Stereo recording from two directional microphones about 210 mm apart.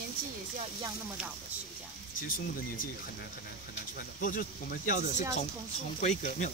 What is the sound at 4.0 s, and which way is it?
Speech, 45° left (ahead or behind).